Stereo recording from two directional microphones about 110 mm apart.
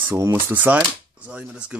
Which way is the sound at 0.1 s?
25° right (ahead or behind).